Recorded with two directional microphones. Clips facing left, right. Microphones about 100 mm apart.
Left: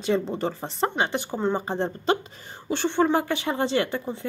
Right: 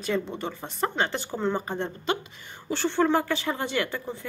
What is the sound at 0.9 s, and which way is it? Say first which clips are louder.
Speech: left 2 dB; 15° left (ahead or behind).